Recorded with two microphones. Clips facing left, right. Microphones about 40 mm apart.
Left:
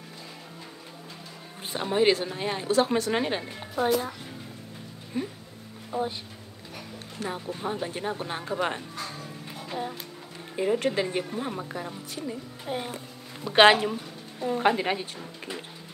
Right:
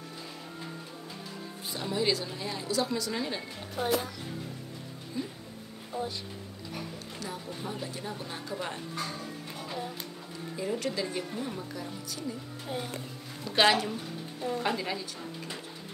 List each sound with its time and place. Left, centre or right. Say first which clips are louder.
1.7 s a woman's voice: left 7 dB; left
3.8 s speech: left 6 dB; centre
5.1 s speech: left 5 dB; left
5.9 s a sound: left 5 dB; left
7.2 s a woman's voice: left 7 dB; left
8.9 s music: right 1 dB; centre
10.5 s a woman's voice: left 7 dB; left
12.6 s a woman's voice: left 3 dB; left
13.7 s speech: left 3 dB; centre
14.8 s a woman's voice: left 6 dB; left